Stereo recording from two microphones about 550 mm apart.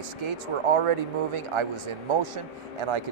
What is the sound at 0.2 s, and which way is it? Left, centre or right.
A man's voice, right.